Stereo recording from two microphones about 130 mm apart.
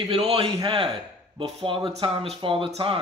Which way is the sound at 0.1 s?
50° right (ahead or behind).